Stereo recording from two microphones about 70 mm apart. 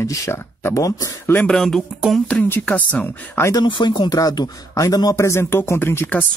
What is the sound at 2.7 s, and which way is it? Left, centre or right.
Speech, left.